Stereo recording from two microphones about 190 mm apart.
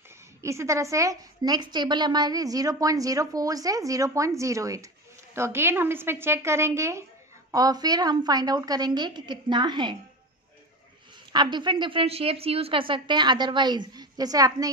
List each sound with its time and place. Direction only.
0.4 s a woman's voice: 15° right (ahead or behind)
11.3 s a woman's voice: 25° right (ahead or behind)